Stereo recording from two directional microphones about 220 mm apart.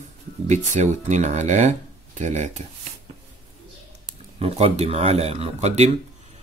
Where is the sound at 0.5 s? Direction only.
30° right (ahead or behind).